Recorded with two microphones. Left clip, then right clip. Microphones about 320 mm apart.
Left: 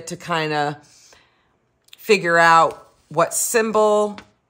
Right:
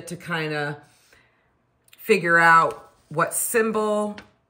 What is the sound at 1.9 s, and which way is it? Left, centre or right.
Speech, centre.